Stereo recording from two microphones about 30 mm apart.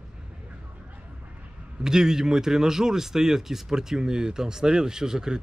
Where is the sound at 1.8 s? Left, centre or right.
Right.